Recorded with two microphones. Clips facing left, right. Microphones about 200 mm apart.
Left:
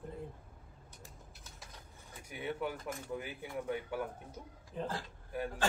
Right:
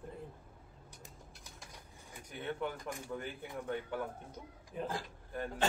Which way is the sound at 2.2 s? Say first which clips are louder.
Left 1 dB; 10° left (ahead or behind).